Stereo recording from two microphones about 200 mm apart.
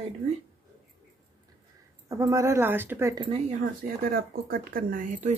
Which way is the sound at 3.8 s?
45° right (ahead or behind).